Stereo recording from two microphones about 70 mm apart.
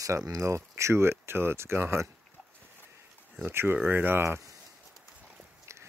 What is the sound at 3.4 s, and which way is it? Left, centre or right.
Speech, right.